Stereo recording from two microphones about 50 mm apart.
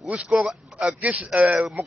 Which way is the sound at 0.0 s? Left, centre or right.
Right.